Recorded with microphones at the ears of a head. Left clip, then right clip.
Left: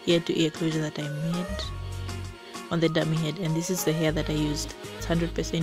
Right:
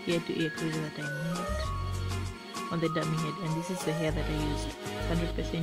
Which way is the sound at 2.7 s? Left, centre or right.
Left.